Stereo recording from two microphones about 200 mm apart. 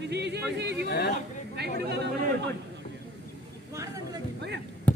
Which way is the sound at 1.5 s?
55° right (ahead or behind).